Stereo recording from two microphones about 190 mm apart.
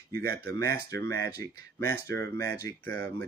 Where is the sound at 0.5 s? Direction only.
15° left (ahead or behind).